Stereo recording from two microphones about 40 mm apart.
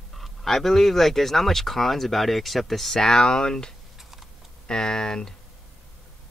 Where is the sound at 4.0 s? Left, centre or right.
Centre.